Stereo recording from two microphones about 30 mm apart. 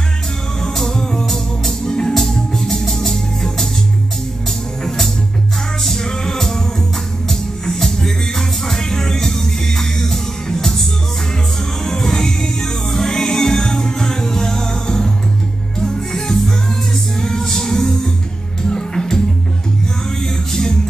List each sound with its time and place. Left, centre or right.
0.6 s music: centre
1.9 s music: left
2.1 s music: centre
6.2 s music: centre
11.8 s music: centre
16.1 s music: centre